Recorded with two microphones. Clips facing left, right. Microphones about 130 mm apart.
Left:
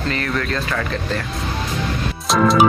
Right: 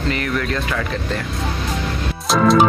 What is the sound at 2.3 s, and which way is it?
Music, centre (ahead or behind).